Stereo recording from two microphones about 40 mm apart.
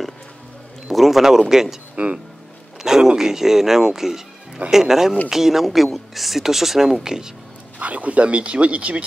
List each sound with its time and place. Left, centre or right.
0.8 s a man's voice: centre
2.0 s speech: right
2.8 s a man's voice: centre
7.8 s speech: right